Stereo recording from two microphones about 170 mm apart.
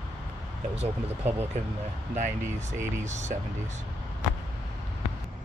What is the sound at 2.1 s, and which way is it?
Speech, 45° right (ahead or behind).